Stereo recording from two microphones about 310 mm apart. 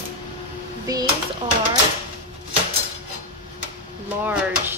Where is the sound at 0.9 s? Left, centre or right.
Centre.